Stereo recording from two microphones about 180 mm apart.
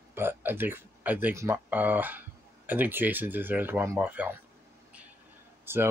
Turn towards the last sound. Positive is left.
turn(degrees=-10)  # may be behind; listen again after turning